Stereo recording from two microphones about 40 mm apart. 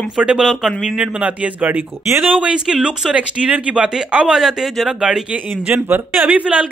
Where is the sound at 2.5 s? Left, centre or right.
Centre.